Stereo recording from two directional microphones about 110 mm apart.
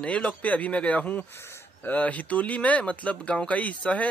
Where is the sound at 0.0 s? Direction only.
10° left (ahead or behind).